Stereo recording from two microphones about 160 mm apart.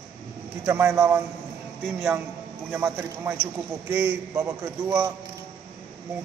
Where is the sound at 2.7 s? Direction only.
15° right (ahead or behind).